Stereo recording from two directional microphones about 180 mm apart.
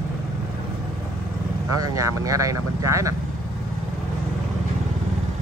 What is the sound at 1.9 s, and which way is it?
Speech, 20° right (ahead or behind).